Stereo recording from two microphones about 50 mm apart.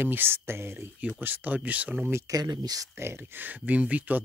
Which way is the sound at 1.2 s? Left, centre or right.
Right.